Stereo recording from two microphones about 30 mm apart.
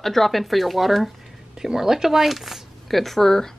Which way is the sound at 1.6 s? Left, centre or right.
Centre.